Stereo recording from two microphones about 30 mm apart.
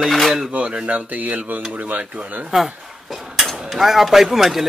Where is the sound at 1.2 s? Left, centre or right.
Right.